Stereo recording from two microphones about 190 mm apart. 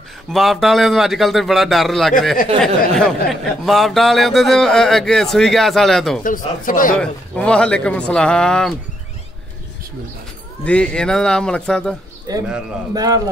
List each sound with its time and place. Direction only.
0.3 s speech: centre (ahead or behind)
6.2 s speech: 45° left (ahead or behind)
7.0 s speech: 5° left (ahead or behind)
10.6 s speech: 5° left (ahead or behind)
12.3 s speech: 20° right (ahead or behind)